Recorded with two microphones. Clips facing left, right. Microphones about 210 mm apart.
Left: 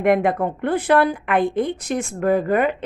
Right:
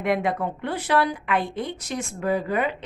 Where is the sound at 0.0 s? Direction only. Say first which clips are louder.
Left 6 dB; 50° left (ahead or behind).